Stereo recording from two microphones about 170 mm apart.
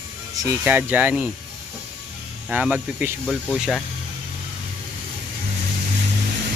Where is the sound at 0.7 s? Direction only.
10° right (ahead or behind).